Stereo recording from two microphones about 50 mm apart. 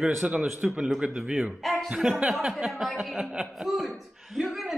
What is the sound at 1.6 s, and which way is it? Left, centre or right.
Speech, centre.